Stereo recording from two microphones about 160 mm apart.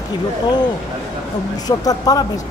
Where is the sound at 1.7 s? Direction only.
25° left (ahead or behind).